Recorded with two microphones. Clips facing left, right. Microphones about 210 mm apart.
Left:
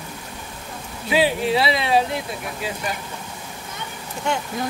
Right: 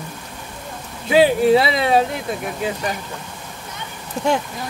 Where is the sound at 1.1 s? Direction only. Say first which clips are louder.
Right 6 dB; 45° right (ahead or behind).